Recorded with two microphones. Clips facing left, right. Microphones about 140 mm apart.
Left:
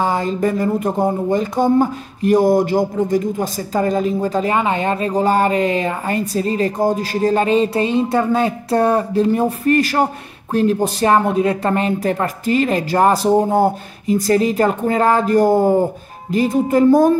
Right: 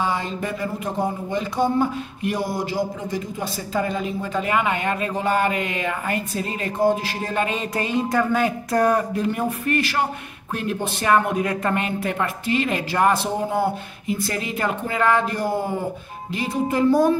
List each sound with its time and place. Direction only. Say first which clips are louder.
0.0 s speech: left 7 dB; 45° left (ahead or behind)